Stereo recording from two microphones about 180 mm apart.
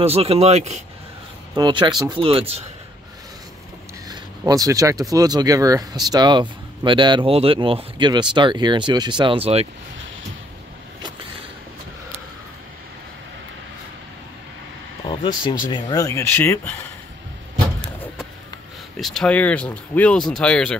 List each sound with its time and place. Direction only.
0.0 s speech: 35° right (ahead or behind)
1.5 s speech: 25° right (ahead or behind)
4.1 s speech: 20° right (ahead or behind)
15.1 s vehicle: 25° left (ahead or behind)
15.7 s speech: 20° left (ahead or behind)
18.9 s speech: centre (ahead or behind)